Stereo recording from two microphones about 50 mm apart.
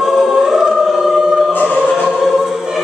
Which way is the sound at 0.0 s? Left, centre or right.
Centre.